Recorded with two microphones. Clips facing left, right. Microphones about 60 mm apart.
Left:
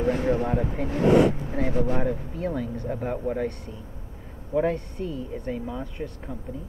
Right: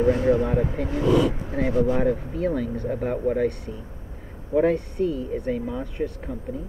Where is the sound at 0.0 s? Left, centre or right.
Right.